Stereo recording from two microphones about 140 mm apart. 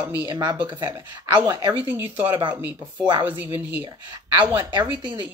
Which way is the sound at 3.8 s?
35° right (ahead or behind).